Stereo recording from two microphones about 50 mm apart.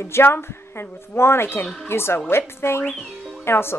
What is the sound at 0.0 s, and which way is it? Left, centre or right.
A woman's voice, left.